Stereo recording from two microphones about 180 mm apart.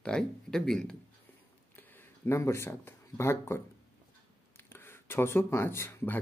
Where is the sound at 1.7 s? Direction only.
10° left (ahead or behind).